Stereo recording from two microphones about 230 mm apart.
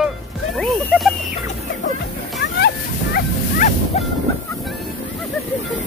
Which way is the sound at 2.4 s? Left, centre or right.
Left.